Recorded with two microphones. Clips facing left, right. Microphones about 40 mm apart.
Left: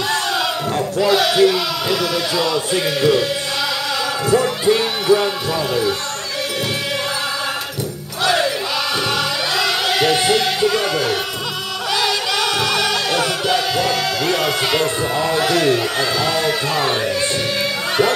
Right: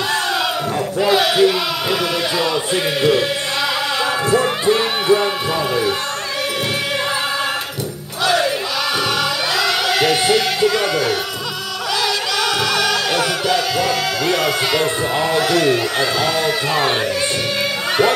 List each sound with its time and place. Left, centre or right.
1.0 s speech: centre
3.0 s speech: centre
4.0 s choir: right
4.6 s speech: centre
9.6 s a sound: centre
10.1 s music: centre
12.0 s music: centre
13.7 s speech: centre